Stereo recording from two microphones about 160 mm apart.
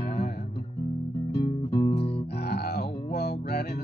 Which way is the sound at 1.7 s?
35° left (ahead or behind).